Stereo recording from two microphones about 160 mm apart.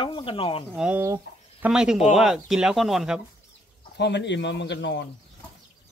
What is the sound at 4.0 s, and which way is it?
A man's voice, 90° left.